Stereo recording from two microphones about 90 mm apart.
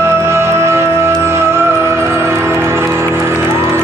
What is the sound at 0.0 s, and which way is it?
Music, 30° right (ahead or behind).